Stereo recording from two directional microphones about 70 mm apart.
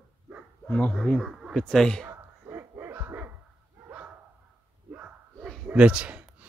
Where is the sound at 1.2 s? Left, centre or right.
Centre.